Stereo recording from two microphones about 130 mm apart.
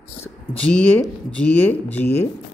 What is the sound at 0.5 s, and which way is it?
Speech, 10° left (ahead or behind).